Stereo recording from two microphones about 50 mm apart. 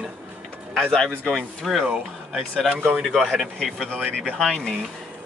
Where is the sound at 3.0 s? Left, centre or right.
Centre.